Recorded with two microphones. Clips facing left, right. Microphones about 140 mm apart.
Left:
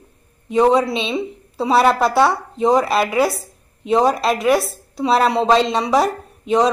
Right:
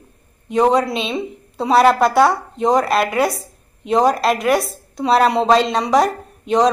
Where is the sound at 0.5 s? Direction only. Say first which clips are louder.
Left 1 dB; centre (ahead or behind).